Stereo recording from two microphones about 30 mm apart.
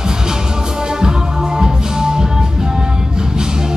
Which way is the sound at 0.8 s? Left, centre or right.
Right.